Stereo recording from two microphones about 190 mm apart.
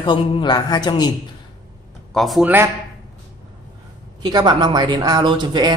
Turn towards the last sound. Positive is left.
turn(degrees=-25)  # may be behind; listen again after turning